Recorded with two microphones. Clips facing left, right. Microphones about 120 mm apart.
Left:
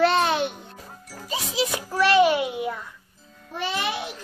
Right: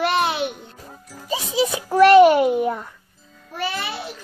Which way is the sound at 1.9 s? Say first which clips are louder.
Right 8 dB; 50° right (ahead or behind).